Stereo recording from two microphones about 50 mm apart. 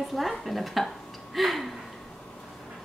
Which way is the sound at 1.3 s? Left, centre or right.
Centre.